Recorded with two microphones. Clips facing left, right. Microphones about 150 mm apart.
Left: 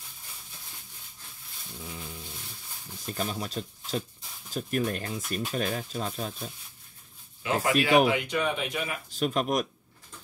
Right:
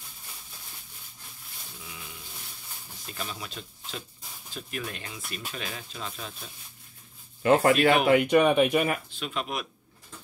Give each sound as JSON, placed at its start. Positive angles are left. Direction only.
{"t": 3.1, "sound": "speech", "side_deg": 40}
{"t": 7.4, "sound": "speech", "side_deg": -50}
{"t": 9.1, "sound": "speech", "side_deg": 40}